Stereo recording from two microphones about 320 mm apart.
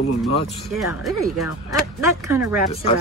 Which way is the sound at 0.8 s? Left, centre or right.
Centre.